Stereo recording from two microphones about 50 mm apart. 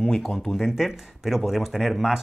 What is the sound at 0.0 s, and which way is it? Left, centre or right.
Speech, centre.